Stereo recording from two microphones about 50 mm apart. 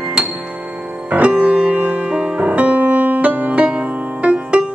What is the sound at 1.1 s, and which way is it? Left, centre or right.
Music, right.